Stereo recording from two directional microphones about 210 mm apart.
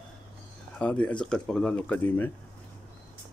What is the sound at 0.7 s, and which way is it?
Speech, 5° left (ahead or behind).